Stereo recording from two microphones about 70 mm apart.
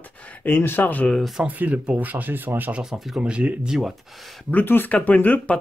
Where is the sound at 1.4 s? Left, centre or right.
Centre.